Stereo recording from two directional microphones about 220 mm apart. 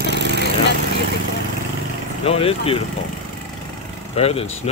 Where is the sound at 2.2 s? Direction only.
25° left (ahead or behind).